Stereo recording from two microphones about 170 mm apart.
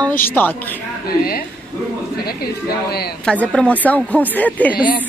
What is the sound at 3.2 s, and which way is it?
Speech, 5° left (ahead or behind).